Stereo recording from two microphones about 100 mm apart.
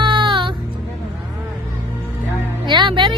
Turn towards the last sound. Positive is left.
turn(degrees=-55)  # may be behind; listen again after turning